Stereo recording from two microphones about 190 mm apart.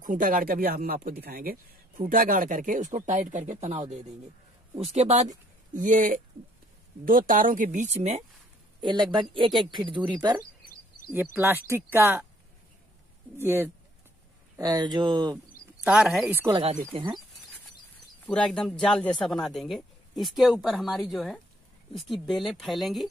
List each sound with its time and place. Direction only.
0.0 s speech: 45° right (ahead or behind)
8.8 s speech: 25° right (ahead or behind)
11.3 s speech: 10° right (ahead or behind)
13.4 s speech: 10° right (ahead or behind)
15.3 s speech: 5° right (ahead or behind)
16.4 s speech: 25° right (ahead or behind)
18.2 s speech: 5° left (ahead or behind)